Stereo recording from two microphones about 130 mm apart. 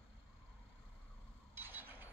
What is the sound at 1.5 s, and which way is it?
Mechanisms, 15° right (ahead or behind).